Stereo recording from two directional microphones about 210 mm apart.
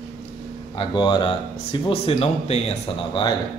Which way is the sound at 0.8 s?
20° left (ahead or behind).